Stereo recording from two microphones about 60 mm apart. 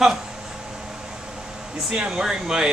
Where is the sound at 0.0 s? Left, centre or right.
Centre.